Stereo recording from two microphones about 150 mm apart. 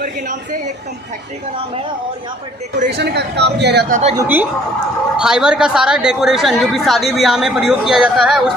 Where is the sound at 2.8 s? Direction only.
90° right.